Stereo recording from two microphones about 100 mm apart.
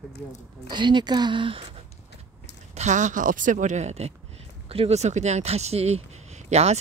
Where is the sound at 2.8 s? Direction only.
90° right.